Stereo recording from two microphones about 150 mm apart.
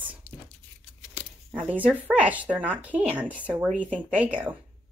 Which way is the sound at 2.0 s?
10° right (ahead or behind).